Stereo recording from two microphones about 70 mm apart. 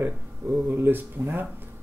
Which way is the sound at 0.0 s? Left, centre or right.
Right.